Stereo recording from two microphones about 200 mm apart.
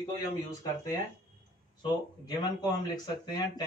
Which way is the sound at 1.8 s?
20° left (ahead or behind).